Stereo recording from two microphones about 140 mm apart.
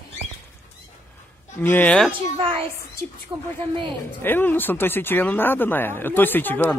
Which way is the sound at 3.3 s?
20° right (ahead or behind).